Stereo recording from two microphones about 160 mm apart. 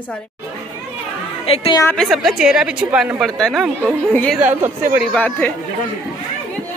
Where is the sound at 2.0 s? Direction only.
Centre (ahead or behind).